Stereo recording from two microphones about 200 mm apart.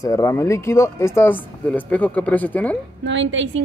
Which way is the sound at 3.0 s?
65° right (ahead or behind).